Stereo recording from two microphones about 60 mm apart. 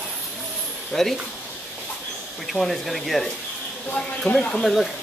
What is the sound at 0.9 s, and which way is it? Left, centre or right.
Speech, centre.